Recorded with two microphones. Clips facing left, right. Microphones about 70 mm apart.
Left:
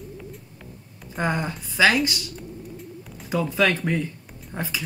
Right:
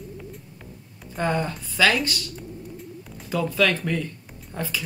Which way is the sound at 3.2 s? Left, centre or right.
Centre.